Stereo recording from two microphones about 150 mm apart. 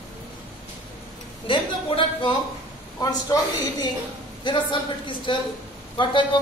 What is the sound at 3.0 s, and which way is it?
A woman's voice, 25° left (ahead or behind).